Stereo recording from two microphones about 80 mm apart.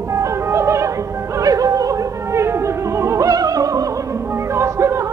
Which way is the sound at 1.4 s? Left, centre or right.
Right.